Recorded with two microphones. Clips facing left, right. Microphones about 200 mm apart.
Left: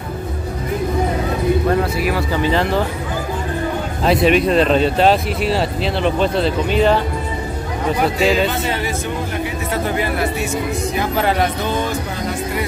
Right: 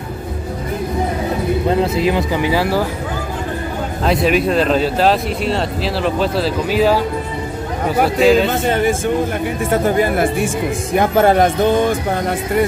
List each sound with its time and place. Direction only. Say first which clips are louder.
1.7 s speech: right 2 dB; 25° right (ahead or behind)
4.0 s speech: left 1 dB; centre (ahead or behind)
8.2 s speech: right 6 dB; centre (ahead or behind)
8.5 s speech: right 5 dB; 50° right (ahead or behind)